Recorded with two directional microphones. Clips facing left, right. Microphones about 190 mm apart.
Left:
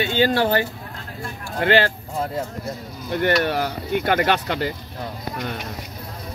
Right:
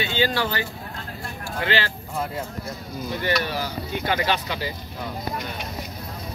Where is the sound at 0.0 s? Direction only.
50° left (ahead or behind).